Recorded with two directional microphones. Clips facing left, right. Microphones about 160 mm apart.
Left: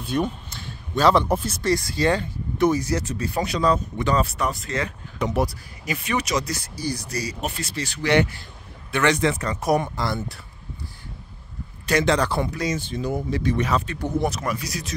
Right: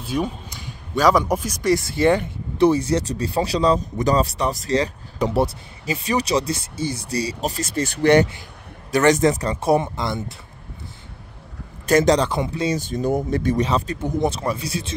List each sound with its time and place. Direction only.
0.1 s a man's voice: 10° right (ahead or behind); by 8.2 s 50° right (ahead or behind)
8.9 s speech: 40° right (ahead or behind); by 10.4 s 20° right (ahead or behind)
11.8 s a man's voice: 45° right (ahead or behind)
12.2 s speech: 20° right (ahead or behind)
12.7 s speech: 45° right (ahead or behind)
13.6 s speech: 30° right (ahead or behind)